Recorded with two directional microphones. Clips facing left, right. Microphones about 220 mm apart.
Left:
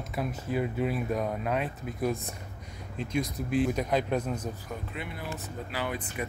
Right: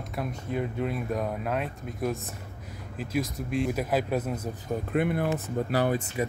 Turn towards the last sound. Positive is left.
turn(degrees=-45)  # may be behind; listen again after turning